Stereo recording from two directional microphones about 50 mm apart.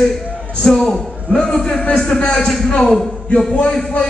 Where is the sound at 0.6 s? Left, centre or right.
Centre.